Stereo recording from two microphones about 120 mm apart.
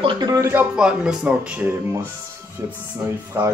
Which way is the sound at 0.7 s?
5° right (ahead or behind).